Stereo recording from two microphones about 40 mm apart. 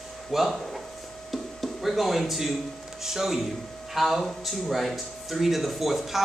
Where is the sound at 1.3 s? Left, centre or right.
Centre.